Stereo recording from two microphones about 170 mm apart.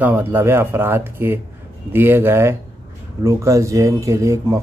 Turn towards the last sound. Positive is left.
turn(degrees=-15)  # may be behind; listen again after turning